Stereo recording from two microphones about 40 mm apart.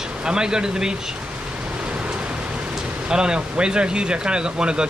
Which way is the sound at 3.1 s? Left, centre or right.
Right.